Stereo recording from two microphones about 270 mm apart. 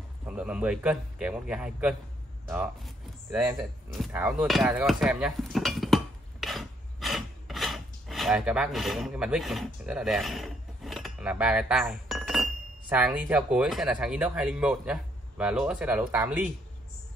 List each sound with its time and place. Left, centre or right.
0.2 s speech: centre
4.2 s a sound: centre
12.9 s speech: centre